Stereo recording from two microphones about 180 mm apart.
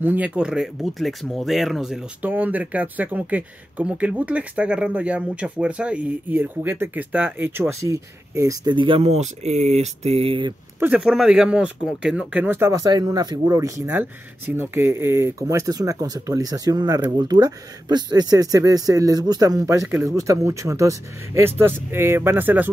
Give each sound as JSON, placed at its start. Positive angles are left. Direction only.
{"t": 0.0, "sound": "speech", "side_deg": -10}
{"t": 10.8, "sound": "speech", "side_deg": -5}